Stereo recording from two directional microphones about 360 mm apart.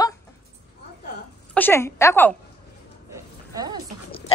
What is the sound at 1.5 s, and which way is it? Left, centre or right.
Speech, centre.